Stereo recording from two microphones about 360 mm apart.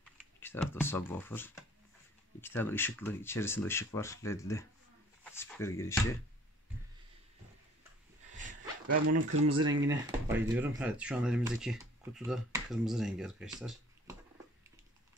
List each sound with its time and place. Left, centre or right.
0.2 s speech: centre
8.4 s dog: right
8.9 s speech: right
9.4 s speech: centre